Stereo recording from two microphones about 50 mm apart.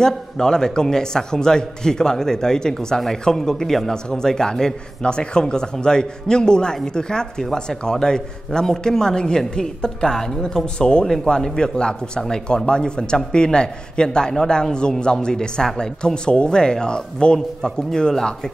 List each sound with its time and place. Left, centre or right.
0.0 s a man's voice: centre